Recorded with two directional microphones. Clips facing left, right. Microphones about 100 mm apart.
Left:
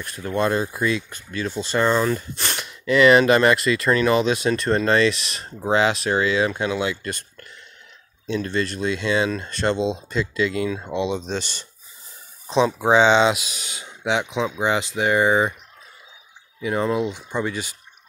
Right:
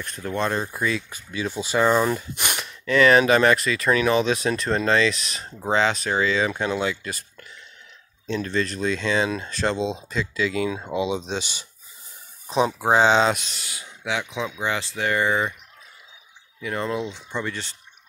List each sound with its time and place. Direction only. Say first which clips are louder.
0.0 s speech: left 3 dB; 5° left (ahead or behind)
1.3 s speech: left 1 dB; 10° right (ahead or behind)
2.8 s speech: left 2 dB; 5° left (ahead or behind)
13.6 s speech: left 2 dB; 20° left (ahead or behind)
16.6 s speech: left 5 dB; 15° left (ahead or behind)